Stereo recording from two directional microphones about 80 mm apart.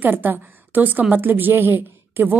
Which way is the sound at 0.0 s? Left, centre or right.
Right.